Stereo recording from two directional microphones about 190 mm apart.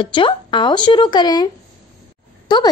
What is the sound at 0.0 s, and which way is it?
A woman's voice, 25° left (ahead or behind).